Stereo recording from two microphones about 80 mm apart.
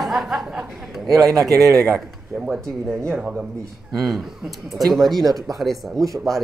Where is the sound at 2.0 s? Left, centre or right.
Centre.